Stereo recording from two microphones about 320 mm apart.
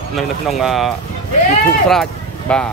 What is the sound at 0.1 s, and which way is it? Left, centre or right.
Speech, centre.